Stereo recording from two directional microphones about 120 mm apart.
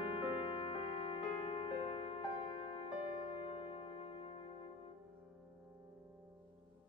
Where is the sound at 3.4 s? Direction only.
50° left (ahead or behind).